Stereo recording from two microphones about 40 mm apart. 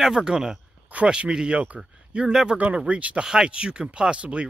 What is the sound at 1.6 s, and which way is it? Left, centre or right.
Speech, right.